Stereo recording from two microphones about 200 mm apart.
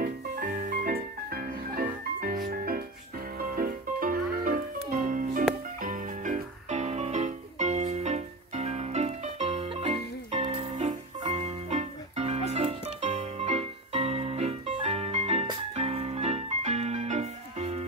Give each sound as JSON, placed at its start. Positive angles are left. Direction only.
{"t": 0.0, "sound": "music", "side_deg": -40}